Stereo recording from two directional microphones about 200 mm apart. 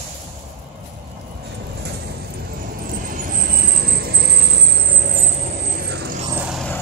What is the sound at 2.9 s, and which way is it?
Vehicle, 40° right (ahead or behind).